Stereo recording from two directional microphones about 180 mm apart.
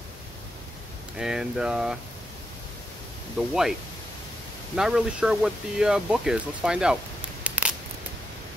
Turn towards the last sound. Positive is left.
turn(degrees=-5)  # may be behind; listen again after turning